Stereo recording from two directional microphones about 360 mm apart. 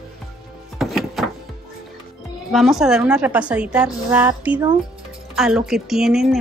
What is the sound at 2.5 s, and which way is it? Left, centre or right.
Speech, centre.